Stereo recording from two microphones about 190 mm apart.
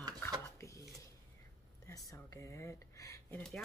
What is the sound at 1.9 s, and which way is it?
Speech, 15° left (ahead or behind).